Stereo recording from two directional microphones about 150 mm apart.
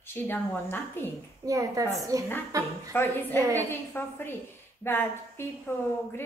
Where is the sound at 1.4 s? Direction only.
20° right (ahead or behind).